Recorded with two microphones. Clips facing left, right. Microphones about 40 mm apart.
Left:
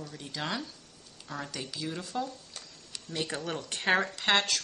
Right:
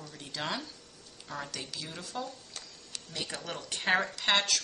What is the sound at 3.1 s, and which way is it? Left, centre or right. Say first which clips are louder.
Speech: left 5 dB; centre.